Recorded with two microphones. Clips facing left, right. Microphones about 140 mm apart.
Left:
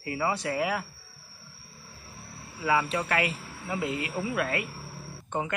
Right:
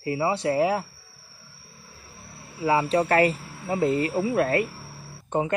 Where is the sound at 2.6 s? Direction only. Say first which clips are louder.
Right 5 dB; 35° right (ahead or behind).